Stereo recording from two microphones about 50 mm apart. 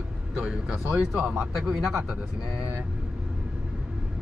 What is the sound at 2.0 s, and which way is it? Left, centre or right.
Speech, right.